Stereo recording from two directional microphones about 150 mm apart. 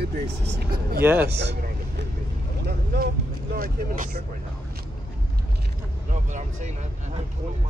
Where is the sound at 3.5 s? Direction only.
70° right (ahead or behind).